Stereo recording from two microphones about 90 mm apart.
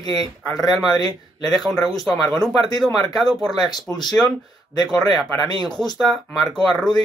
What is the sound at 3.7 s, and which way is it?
Speech, 50° left (ahead or behind).